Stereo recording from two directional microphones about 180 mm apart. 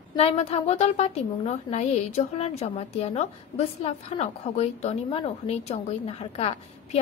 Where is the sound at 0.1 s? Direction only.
35° left (ahead or behind).